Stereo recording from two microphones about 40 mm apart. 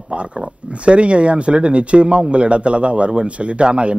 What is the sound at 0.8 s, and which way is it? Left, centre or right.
A man's voice, right.